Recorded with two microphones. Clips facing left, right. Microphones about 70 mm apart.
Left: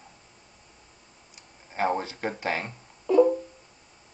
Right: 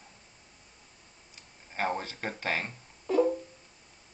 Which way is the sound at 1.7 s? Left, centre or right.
Centre.